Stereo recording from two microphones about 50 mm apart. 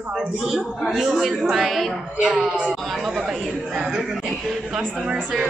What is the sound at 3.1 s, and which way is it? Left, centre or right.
Speech, centre.